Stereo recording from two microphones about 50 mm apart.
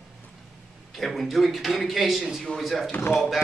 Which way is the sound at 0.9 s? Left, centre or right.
Centre.